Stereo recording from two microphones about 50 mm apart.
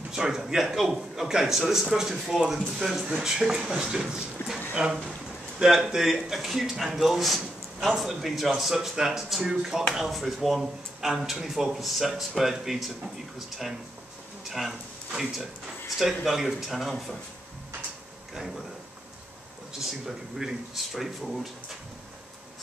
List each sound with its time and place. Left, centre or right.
0.1 s a man's voice: centre
14.6 s a man's voice: centre
19.8 s speech: centre